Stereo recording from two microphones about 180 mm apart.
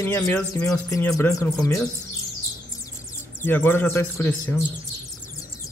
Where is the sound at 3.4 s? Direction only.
10° left (ahead or behind).